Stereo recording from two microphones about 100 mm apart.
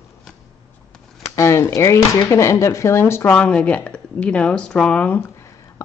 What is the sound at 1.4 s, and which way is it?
Speech, 30° left (ahead or behind).